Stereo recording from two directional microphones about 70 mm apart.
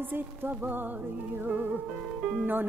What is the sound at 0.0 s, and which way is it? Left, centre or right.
Music, right.